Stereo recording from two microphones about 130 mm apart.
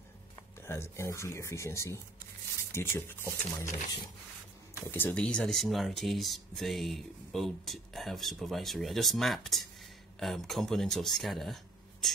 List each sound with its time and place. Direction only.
0.6 s speech: 20° left (ahead or behind)
4.7 s speech: 15° left (ahead or behind)